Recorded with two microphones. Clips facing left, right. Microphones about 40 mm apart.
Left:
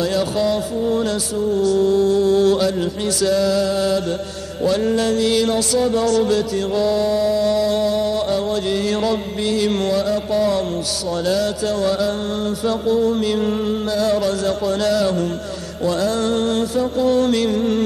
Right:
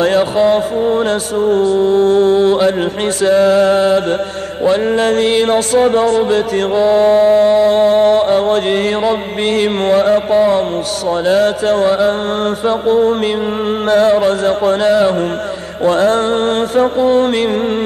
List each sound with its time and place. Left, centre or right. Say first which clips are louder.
0.0 s music: right 7 dB; right